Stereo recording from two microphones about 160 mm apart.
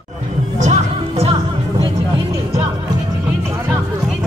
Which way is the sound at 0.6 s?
45° right (ahead or behind).